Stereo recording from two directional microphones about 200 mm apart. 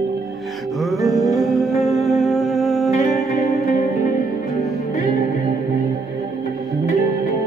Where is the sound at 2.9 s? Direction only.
35° left (ahead or behind).